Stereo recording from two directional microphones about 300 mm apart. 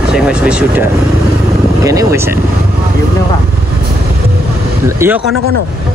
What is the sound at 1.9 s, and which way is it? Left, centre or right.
Speech, centre.